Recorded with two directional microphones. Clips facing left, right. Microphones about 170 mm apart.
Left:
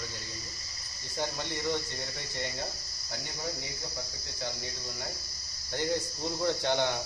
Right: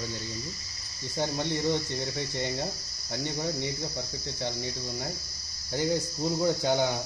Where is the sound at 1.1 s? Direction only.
20° right (ahead or behind).